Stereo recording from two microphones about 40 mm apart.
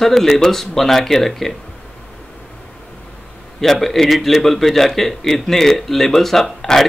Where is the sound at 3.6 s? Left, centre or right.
Centre.